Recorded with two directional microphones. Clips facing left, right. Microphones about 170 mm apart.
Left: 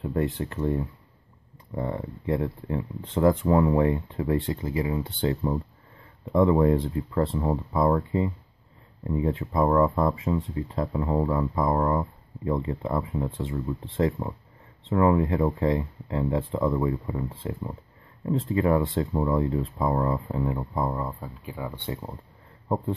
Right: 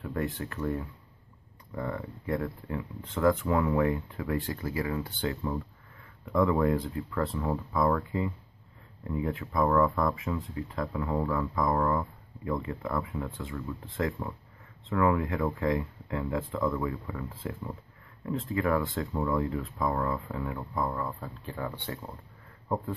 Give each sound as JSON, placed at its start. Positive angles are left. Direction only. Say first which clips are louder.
{"t": 0.0, "sound": "speech", "louder": "left 6 dB", "side_deg": 25}
{"t": 21.2, "sound": "speech", "louder": "left 1 dB", "side_deg": 10}